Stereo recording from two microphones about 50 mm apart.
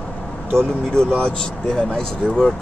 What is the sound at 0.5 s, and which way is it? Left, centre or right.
Speech, centre.